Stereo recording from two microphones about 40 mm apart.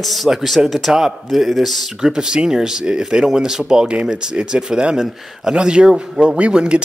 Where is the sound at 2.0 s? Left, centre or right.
Centre.